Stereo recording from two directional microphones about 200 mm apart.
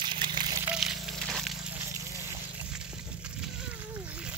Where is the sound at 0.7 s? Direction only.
Centre (ahead or behind).